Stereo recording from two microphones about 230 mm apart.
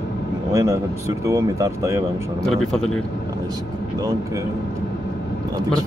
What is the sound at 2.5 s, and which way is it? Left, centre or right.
Speech, centre.